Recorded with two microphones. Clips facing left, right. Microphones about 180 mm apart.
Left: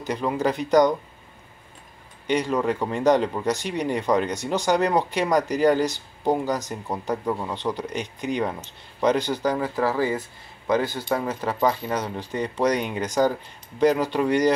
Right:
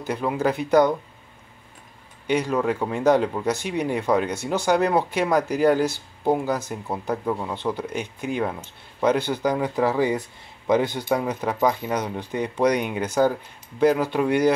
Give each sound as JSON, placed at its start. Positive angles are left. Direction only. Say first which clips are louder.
{"t": 0.1, "sound": "speech", "louder": "right 1 dB", "side_deg": -5}
{"t": 2.2, "sound": "speech", "louder": "right 1 dB", "side_deg": -10}